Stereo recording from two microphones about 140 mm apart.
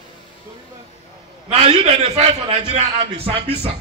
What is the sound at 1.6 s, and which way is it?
A man's voice, 45° right (ahead or behind).